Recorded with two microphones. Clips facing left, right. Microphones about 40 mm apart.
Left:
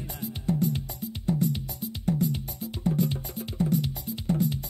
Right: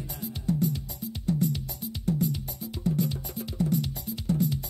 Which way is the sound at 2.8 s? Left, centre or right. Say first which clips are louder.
Left 1 dB; left.